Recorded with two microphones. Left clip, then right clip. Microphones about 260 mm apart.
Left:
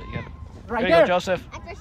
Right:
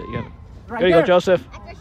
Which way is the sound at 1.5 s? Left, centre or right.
Left.